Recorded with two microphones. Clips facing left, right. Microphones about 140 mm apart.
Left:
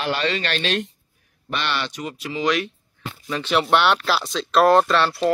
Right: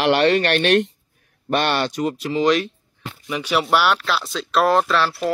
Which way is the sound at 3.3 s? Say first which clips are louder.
Even; 10° right (ahead or behind).